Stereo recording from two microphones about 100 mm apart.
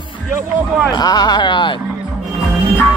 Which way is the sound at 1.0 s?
45° left (ahead or behind).